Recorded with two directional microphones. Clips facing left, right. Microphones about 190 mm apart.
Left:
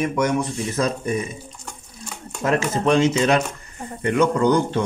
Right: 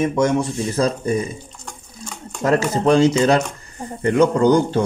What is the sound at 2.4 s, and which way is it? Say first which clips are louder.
Speech: right 3 dB; 35° right (ahead or behind).